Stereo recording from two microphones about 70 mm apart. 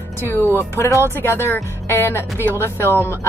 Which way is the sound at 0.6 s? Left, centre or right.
Left.